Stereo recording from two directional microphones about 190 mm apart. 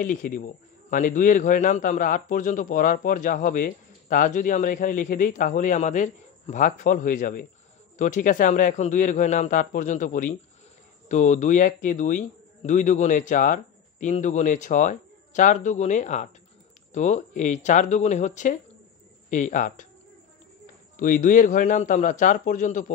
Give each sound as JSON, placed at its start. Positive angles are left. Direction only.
{"t": 0.0, "sound": "a man's voice", "side_deg": 45}
{"t": 20.9, "sound": "a man's voice", "side_deg": 45}